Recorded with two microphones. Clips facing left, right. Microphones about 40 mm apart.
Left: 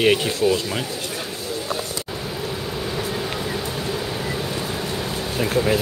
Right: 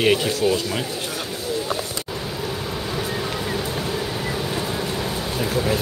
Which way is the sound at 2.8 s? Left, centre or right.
Centre.